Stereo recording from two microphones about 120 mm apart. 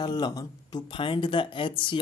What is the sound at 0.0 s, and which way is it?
Speech, 35° left (ahead or behind).